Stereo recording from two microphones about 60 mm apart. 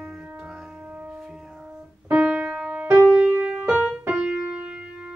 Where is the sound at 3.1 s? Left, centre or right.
Centre.